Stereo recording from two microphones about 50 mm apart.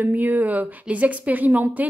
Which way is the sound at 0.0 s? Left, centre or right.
Right.